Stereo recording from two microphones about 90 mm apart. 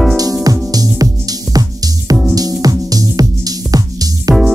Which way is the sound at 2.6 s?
45° right (ahead or behind).